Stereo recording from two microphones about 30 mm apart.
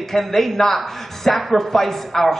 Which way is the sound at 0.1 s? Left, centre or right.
Centre.